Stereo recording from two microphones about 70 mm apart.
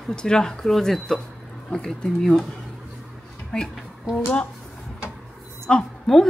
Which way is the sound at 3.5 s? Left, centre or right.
Centre.